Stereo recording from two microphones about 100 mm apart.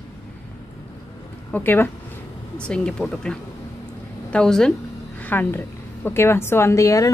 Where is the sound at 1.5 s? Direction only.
20° left (ahead or behind).